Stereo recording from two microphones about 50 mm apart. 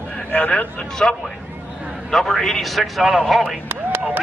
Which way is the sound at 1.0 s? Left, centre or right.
Centre.